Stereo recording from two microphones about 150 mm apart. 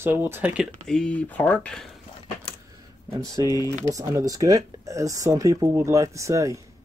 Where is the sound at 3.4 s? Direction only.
25° left (ahead or behind).